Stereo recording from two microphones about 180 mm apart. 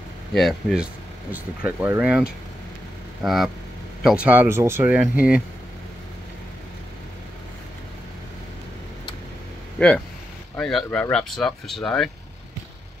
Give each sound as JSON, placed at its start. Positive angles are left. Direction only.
{"t": 0.3, "sound": "speech", "side_deg": 0}
{"t": 9.8, "sound": "speech", "side_deg": 5}